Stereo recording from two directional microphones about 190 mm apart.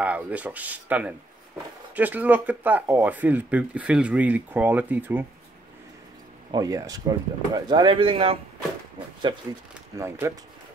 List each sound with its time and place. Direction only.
0.0 s speech: 5° right (ahead or behind)
6.5 s speech: 20° right (ahead or behind)
9.9 s speech: 15° right (ahead or behind)